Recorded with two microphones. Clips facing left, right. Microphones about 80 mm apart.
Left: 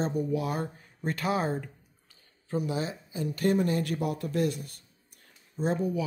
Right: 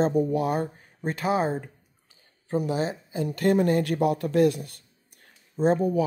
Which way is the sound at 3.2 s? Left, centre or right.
Right.